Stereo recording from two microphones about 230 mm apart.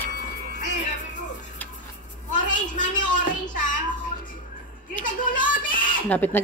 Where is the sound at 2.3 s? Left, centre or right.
Left.